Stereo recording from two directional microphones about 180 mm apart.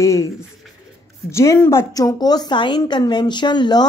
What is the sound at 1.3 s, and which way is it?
A woman's voice, 15° left (ahead or behind).